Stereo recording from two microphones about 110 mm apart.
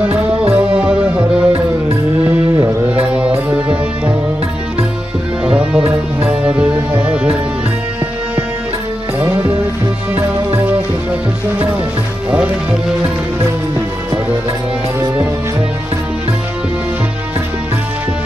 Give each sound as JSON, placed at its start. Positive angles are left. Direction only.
{"t": 0.0, "sound": "music", "side_deg": -10}
{"t": 2.9, "sound": "music", "side_deg": -10}
{"t": 5.9, "sound": "music", "side_deg": -10}
{"t": 10.1, "sound": "music", "side_deg": -15}